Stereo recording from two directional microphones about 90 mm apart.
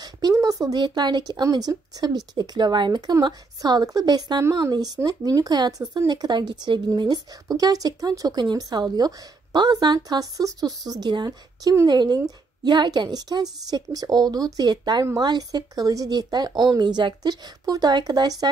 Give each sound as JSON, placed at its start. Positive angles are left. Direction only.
{"t": 0.3, "sound": "speech", "side_deg": -45}
{"t": 0.8, "sound": "speech", "side_deg": -55}